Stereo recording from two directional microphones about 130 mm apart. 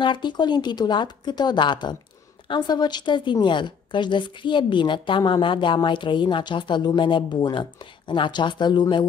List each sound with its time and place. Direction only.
0.0 s a woman's voice: 35° left (ahead or behind)